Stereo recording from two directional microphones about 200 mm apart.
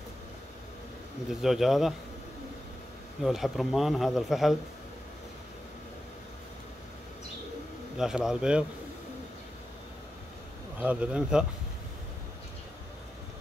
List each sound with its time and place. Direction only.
1.3 s speech: centre (ahead or behind)
3.2 s speech: centre (ahead or behind)
8.0 s speech: 5° right (ahead or behind)
10.8 s speech: 5° right (ahead or behind)